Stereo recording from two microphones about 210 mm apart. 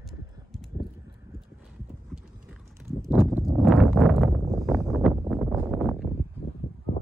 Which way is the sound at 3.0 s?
Centre (ahead or behind).